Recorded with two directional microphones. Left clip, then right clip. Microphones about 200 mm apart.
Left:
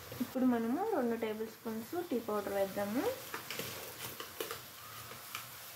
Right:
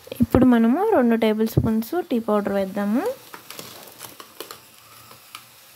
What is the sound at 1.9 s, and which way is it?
Speech, 50° right (ahead or behind).